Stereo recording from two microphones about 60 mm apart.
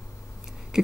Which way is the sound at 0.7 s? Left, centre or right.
Centre.